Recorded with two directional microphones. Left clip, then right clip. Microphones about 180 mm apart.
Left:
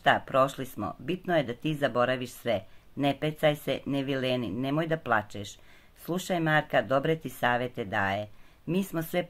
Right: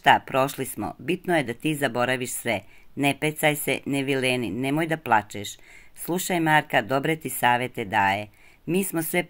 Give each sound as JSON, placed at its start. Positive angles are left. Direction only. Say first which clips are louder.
{"t": 0.0, "sound": "speech", "louder": "right 4 dB", "side_deg": -10}